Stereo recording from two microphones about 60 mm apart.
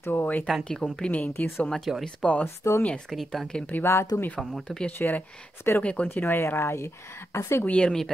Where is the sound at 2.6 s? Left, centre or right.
Left.